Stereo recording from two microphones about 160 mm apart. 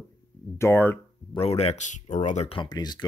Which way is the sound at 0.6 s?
15° left (ahead or behind).